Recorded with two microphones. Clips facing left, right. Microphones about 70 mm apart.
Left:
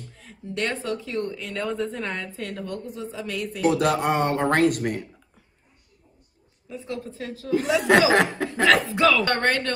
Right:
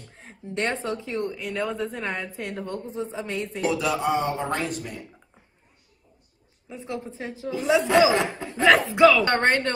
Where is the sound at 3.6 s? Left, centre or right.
Left.